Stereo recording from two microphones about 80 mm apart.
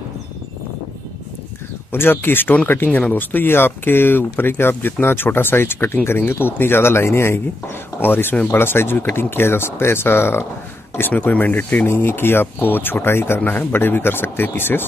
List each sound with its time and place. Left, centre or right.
1.9 s speech: left